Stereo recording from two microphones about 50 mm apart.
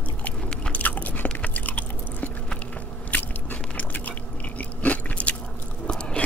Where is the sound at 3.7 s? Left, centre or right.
Left.